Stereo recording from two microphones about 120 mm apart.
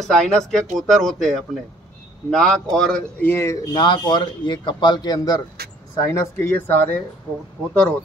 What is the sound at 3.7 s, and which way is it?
A man's voice, 40° left (ahead or behind).